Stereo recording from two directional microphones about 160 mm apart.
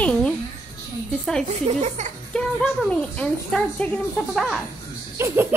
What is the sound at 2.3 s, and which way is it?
Speech, 5° left (ahead or behind).